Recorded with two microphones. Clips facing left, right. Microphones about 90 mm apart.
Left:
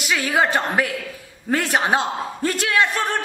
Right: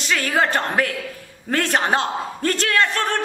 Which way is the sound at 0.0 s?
10° left (ahead or behind).